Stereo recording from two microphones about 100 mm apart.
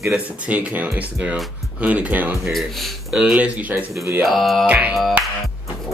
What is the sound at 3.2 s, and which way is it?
Speech, 10° right (ahead or behind).